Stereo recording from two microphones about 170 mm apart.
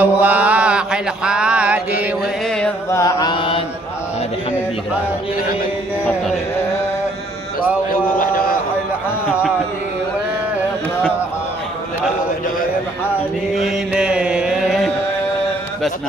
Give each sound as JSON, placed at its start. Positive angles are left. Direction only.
{"t": 0.0, "sound": "music", "side_deg": -10}
{"t": 2.9, "sound": "chant", "side_deg": 20}
{"t": 7.9, "sound": "a sound", "side_deg": 60}
{"t": 13.6, "sound": "mantra", "side_deg": -5}